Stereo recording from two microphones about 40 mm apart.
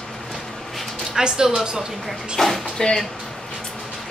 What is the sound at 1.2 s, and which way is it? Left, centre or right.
Speech, centre.